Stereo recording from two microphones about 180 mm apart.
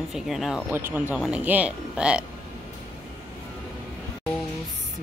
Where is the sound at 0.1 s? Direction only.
Centre (ahead or behind).